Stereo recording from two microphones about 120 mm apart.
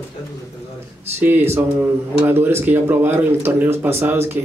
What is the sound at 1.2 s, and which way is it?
A man's voice, 20° right (ahead or behind).